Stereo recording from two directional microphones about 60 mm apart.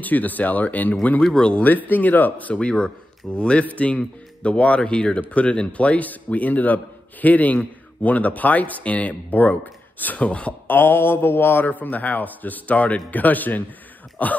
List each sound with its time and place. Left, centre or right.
0.0 s a man's voice: left
1.2 s speech: centre
1.6 s a man's voice: left
10.7 s a man's voice: left